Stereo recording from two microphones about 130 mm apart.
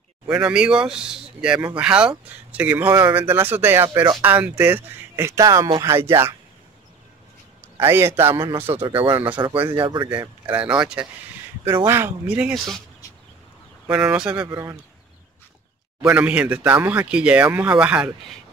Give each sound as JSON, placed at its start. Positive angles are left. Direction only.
{"t": 0.3, "sound": "speech", "side_deg": -10}
{"t": 7.8, "sound": "speech", "side_deg": -20}
{"t": 8.7, "sound": "speech", "side_deg": -45}
{"t": 10.5, "sound": "speech", "side_deg": -10}
{"t": 13.8, "sound": "speech", "side_deg": -10}
{"t": 14.5, "sound": "speech", "side_deg": -30}
{"t": 16.0, "sound": "speech", "side_deg": -10}